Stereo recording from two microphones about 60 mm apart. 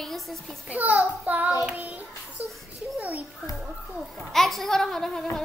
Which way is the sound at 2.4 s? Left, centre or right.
Right.